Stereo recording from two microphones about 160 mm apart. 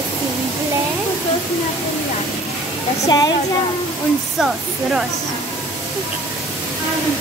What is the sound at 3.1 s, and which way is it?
Speech, 25° left (ahead or behind).